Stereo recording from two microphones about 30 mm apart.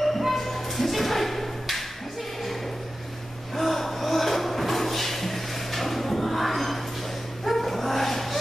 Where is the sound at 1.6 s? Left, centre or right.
Centre.